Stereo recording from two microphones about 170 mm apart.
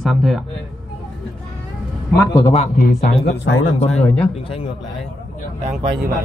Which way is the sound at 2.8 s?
60° left (ahead or behind).